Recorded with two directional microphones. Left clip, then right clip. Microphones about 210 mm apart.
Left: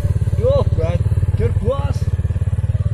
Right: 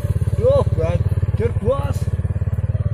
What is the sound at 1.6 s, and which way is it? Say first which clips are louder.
Vehicle: right 1 dB; centre (ahead or behind).